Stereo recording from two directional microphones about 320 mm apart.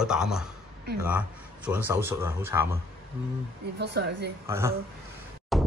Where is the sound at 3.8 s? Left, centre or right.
Right.